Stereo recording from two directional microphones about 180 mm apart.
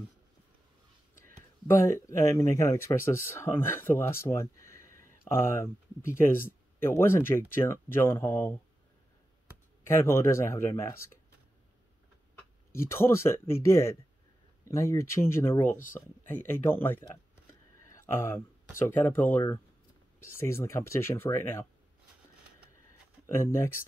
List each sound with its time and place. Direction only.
1.7 s speech: 15° left (ahead or behind)
9.8 s speech: 15° left (ahead or behind)
12.7 s speech: 15° left (ahead or behind)
23.3 s speech: 15° left (ahead or behind)